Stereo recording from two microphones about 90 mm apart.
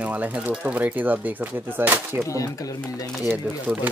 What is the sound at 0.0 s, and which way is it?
Speech, 15° right (ahead or behind).